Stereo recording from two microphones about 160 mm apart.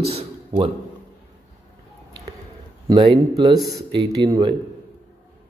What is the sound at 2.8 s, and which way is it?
A man's voice, 30° right (ahead or behind).